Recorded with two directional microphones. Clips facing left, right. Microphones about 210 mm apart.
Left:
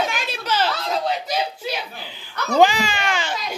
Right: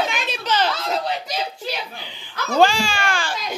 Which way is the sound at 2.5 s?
20° left (ahead or behind).